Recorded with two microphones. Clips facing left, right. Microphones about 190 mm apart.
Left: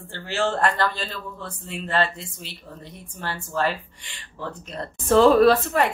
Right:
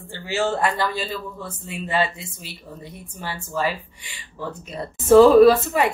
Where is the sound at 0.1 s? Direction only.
5° right (ahead or behind).